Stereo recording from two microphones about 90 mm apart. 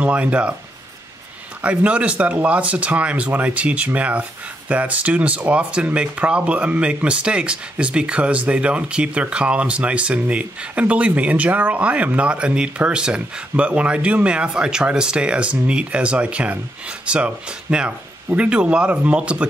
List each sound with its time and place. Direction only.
0.0 s speech: 15° right (ahead or behind)
1.6 s speech: 15° right (ahead or behind)